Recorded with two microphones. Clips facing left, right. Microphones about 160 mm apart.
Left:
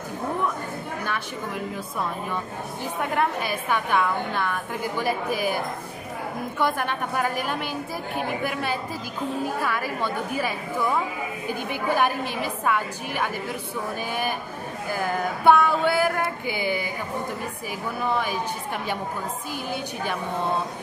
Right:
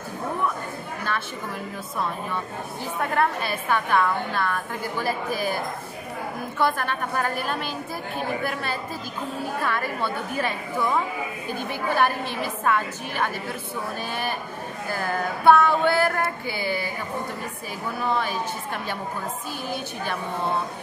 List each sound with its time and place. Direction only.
3.0 s a woman's voice: 15° left (ahead or behind)
6.6 s a woman's voice: 15° left (ahead or behind)
14.9 s a woman's voice: 15° left (ahead or behind)